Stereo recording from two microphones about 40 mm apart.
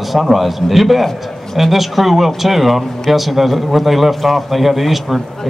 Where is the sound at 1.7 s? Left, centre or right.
Centre.